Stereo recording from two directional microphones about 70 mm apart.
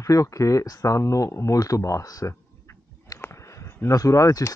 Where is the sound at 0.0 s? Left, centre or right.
Left.